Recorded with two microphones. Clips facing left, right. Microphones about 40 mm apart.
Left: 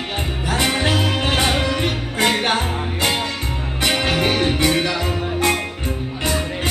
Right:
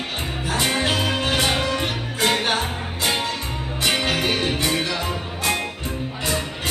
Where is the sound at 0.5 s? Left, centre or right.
Left.